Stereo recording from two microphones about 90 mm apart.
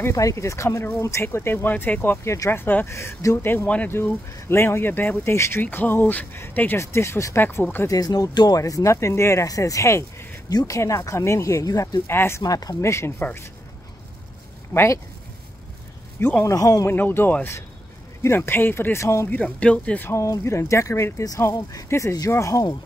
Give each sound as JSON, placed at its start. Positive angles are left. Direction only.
{"t": 0.1, "sound": "speech", "side_deg": 40}
{"t": 6.8, "sound": "speech", "side_deg": 30}
{"t": 7.9, "sound": "speech", "side_deg": 40}
{"t": 10.5, "sound": "speech", "side_deg": 45}
{"t": 10.8, "sound": "speech", "side_deg": 35}
{"t": 14.7, "sound": "speech", "side_deg": 30}
{"t": 16.2, "sound": "speech", "side_deg": 25}
{"t": 16.5, "sound": "speech", "side_deg": 40}
{"t": 16.9, "sound": "speech", "side_deg": 25}
{"t": 19.3, "sound": "speech", "side_deg": 15}
{"t": 20.1, "sound": "speech", "side_deg": 35}